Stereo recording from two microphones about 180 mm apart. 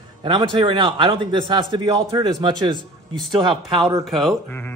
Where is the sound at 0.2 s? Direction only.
25° right (ahead or behind).